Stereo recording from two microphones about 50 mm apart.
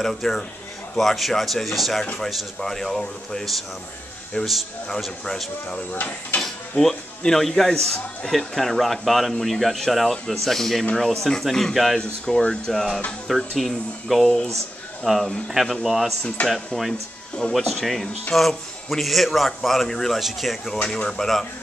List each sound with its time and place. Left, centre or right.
0.0 s a man's voice: centre
4.4 s speech: centre
5.9 s mechanisms: left
6.8 s a man's voice: centre
12.0 s speech: centre
13.6 s a man's voice: centre
20.8 s speech: centre